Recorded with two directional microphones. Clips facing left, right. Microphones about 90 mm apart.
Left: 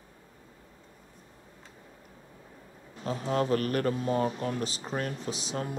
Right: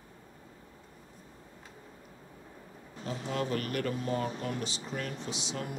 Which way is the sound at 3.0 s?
35° left (ahead or behind).